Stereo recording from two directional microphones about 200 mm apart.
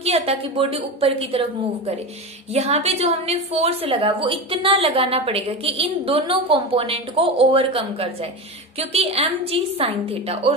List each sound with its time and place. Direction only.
0.0 s a woman's voice: 30° right (ahead or behind)